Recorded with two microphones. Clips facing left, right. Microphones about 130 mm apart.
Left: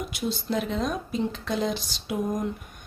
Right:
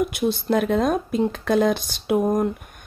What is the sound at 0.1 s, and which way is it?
A woman's voice, 55° right (ahead or behind).